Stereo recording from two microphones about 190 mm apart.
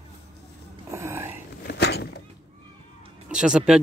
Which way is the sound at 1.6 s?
60° left (ahead or behind).